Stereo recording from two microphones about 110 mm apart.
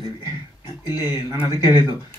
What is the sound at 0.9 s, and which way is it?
Speech, 40° left (ahead or behind).